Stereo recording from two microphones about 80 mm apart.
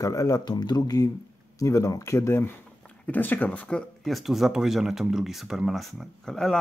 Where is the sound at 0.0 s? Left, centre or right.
Left; by 3.8 s centre.